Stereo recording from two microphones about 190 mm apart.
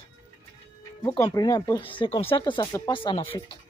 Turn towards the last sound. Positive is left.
turn(degrees=25)  # may be behind; listen again after turning